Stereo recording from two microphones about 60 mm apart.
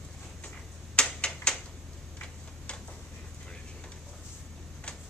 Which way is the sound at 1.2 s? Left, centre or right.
Centre.